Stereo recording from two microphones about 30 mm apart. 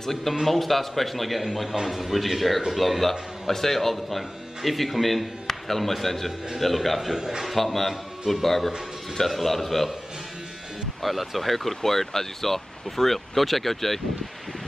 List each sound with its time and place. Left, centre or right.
0.0 s a man's voice: centre
7.2 s speech: right
7.4 s a man's voice: centre
11.0 s speech: centre